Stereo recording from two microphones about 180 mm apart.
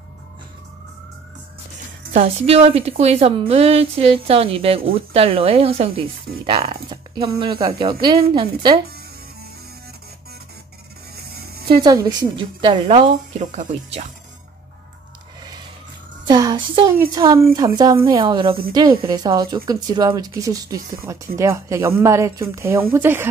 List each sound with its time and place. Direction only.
2.1 s a woman's voice: 35° right (ahead or behind)
11.5 s music: 60° right (ahead or behind)
11.8 s speech: 20° right (ahead or behind)
16.3 s music: 25° right (ahead or behind)
17.0 s speech: 20° right (ahead or behind)